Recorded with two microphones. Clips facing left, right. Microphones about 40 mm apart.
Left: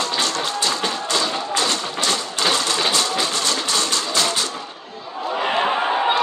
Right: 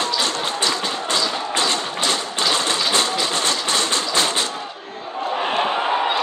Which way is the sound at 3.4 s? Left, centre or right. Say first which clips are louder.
Right 1 dB; right.